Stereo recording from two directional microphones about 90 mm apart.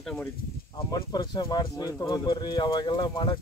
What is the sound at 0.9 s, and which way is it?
Speech, 45° left (ahead or behind).